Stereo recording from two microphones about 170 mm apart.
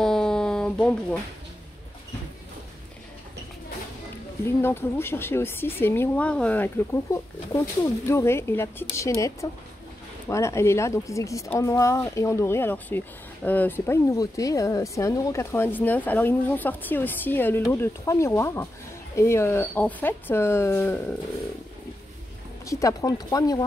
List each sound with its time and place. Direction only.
0.0 s a sound: 5° left (ahead or behind)
4.6 s a woman's voice: 15° left (ahead or behind)
22.7 s speech: 20° left (ahead or behind)